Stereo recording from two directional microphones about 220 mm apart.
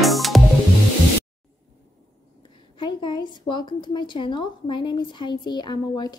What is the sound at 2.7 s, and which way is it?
A woman's voice, 20° left (ahead or behind).